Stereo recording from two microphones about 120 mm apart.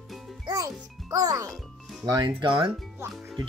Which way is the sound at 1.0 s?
30° right (ahead or behind).